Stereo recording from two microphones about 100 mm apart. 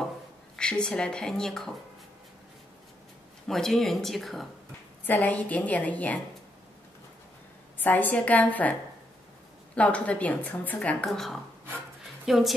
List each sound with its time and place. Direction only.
0.6 s a woman's voice: 10° left (ahead or behind)
3.4 s speech: 5° left (ahead or behind)
5.0 s a woman's voice: 15° left (ahead or behind)
7.8 s a woman's voice: 20° left (ahead or behind)
9.8 s a woman's voice: 15° left (ahead or behind)
11.1 s speech: centre (ahead or behind)